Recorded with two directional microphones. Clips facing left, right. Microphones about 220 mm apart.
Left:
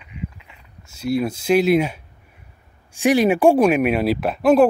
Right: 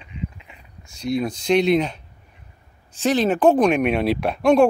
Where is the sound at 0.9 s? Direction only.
5° left (ahead or behind).